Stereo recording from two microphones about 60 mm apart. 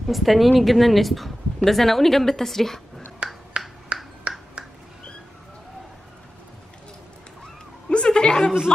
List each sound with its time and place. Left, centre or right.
0.1 s speech: centre
3.2 s finger snapping: centre
7.9 s a sound: centre